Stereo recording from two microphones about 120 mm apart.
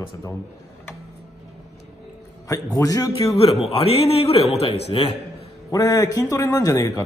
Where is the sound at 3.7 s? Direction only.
55° left (ahead or behind).